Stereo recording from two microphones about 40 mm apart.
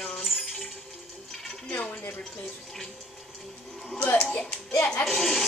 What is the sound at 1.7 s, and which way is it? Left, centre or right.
Speech, left.